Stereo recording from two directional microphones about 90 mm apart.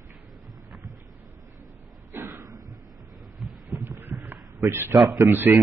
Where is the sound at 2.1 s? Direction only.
25° right (ahead or behind).